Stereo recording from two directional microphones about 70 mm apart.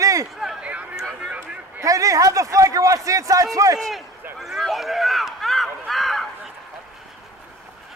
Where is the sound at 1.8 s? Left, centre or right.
Right.